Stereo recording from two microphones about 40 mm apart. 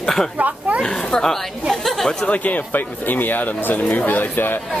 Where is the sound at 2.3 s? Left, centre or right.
Left.